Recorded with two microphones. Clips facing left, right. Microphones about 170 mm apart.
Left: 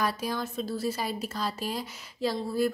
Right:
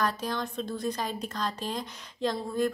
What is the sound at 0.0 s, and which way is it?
A woman's voice, 10° left (ahead or behind).